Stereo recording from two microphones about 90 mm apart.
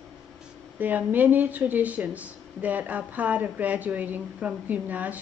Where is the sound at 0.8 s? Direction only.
20° right (ahead or behind).